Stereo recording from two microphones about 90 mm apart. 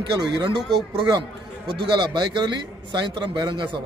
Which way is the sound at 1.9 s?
55° right (ahead or behind).